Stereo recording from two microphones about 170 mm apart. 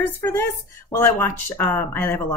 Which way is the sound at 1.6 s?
10° left (ahead or behind).